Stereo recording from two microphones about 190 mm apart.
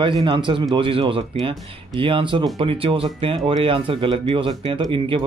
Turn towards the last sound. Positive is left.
turn(degrees=-25)  # may be behind; listen again after turning